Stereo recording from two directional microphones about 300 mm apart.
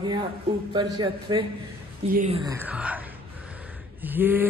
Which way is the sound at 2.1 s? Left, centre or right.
Right.